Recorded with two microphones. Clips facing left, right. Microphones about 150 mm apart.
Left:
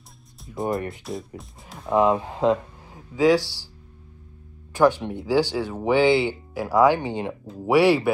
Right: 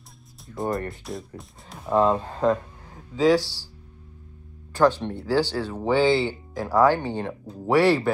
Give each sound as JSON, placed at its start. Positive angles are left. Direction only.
{"t": 0.4, "sound": "speech", "side_deg": 0}
{"t": 2.0, "sound": "speech", "side_deg": 15}
{"t": 4.7, "sound": "speech", "side_deg": 10}